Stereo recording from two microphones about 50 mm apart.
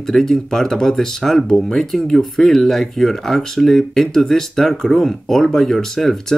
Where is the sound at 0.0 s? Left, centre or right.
Centre.